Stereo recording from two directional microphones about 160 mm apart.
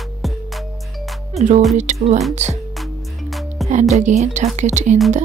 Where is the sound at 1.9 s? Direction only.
45° right (ahead or behind).